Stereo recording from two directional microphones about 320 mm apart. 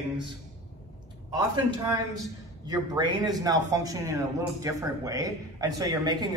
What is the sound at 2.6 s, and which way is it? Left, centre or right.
Speech, centre.